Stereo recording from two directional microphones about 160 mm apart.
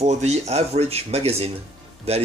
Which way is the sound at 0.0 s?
45° right (ahead or behind).